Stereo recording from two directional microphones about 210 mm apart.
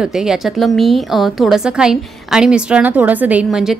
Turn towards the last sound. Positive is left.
turn(degrees=-5)  # may be behind; listen again after turning